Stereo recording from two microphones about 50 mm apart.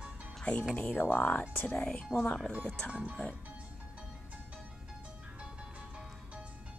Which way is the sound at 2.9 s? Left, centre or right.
Right.